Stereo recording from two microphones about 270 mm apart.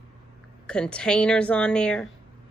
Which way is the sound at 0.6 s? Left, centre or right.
Centre.